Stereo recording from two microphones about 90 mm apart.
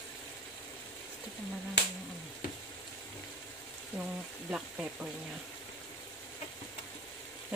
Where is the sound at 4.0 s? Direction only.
10° right (ahead or behind).